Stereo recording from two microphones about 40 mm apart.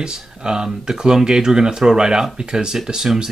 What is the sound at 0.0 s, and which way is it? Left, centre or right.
Speech, centre.